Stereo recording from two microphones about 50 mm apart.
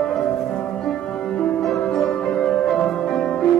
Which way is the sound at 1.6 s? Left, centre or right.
Centre.